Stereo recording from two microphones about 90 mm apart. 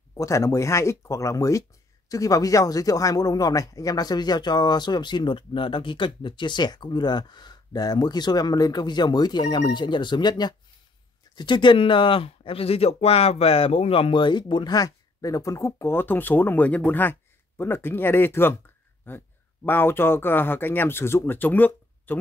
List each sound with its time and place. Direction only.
0.1 s speech: 35° left (ahead or behind); by 22.2 s 20° left (ahead or behind)